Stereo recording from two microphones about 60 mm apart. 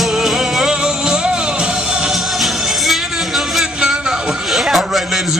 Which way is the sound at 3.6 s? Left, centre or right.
Centre.